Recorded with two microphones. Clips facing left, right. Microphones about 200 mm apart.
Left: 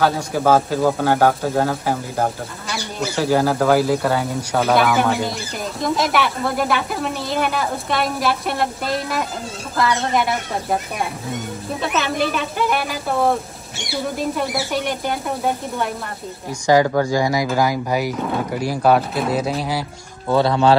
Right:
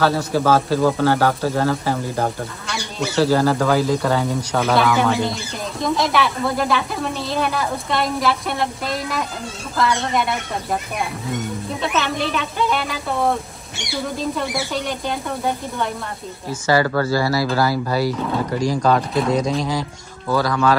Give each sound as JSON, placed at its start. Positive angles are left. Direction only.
{"t": 0.0, "sound": "speech", "side_deg": 15}
{"t": 3.0, "sound": "speech", "side_deg": 10}
{"t": 11.8, "sound": "speech", "side_deg": 0}
{"t": 20.2, "sound": "speech", "side_deg": 25}